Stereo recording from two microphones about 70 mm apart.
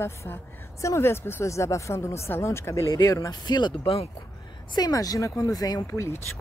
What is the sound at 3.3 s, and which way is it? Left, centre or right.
Speech, left.